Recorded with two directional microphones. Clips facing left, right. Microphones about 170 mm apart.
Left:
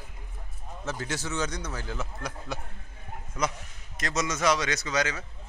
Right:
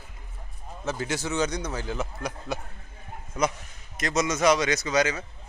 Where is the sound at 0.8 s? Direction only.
15° right (ahead or behind).